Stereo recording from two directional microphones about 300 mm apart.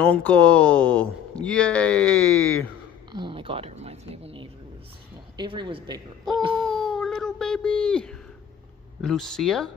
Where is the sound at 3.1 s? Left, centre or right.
Centre.